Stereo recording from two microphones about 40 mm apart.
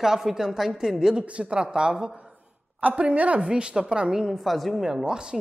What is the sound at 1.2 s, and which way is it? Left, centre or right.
Speech, right.